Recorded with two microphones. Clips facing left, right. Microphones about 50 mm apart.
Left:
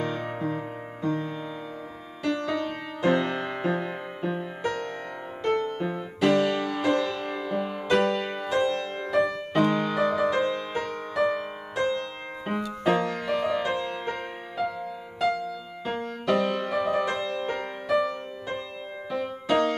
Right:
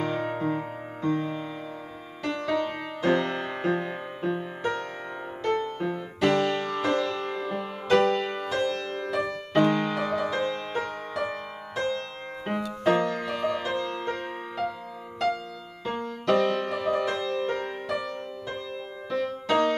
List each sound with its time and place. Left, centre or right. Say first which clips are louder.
0.1 s music: right 2 dB; centre
1.0 s music: right 2 dB; right
2.3 s music: right 4 dB; centre
3.0 s music: left 1 dB; centre
5.4 s music: left 1 dB; centre
5.8 s music: even; centre
8.5 s music: left 4 dB; left
9.5 s music: right 1 dB; centre
10.7 s music: even; centre
13.5 s music: left 1 dB; centre
16.3 s music: right 1 dB; centre
19.0 s music: even; centre